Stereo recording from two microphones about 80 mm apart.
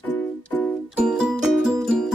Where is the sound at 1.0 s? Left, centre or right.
Centre.